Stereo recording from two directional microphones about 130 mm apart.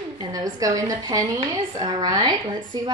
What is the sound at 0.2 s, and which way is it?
A woman's voice, 30° right (ahead or behind).